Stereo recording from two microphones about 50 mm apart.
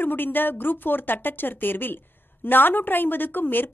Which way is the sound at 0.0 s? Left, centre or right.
Left.